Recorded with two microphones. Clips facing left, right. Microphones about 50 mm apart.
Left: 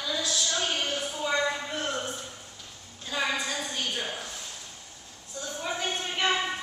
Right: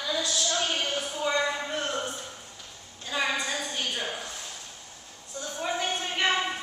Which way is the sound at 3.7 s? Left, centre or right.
Centre.